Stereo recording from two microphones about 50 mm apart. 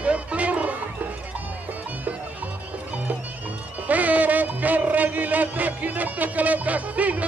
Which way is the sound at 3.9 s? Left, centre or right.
Right.